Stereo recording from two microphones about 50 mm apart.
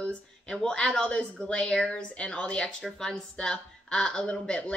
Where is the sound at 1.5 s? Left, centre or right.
Centre.